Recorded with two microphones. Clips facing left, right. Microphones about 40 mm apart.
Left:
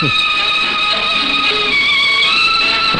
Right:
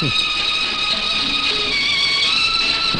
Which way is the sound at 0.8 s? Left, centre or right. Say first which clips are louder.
Left 6 dB; left.